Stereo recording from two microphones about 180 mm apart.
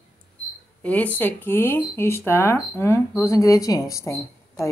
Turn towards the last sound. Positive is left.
turn(degrees=15)  # may be behind; listen again after turning